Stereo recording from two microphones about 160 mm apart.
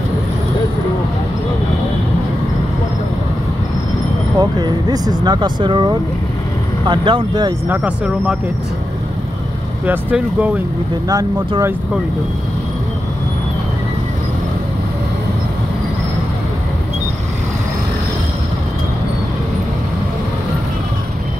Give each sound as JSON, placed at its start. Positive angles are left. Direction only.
{"t": 4.4, "sound": "speech", "side_deg": -25}
{"t": 7.6, "sound": "speech", "side_deg": -10}
{"t": 9.8, "sound": "speech", "side_deg": -10}
{"t": 11.1, "sound": "speech", "side_deg": -25}